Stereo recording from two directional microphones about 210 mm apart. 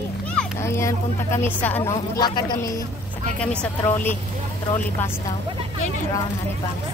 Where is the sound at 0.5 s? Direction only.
15° left (ahead or behind).